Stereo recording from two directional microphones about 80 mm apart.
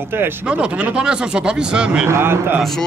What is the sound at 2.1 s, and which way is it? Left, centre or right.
Speech, right.